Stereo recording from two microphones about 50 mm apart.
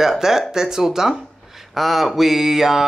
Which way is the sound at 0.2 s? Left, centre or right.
Centre.